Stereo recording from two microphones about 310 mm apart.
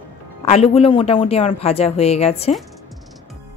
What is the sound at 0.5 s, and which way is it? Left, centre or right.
Speech, centre.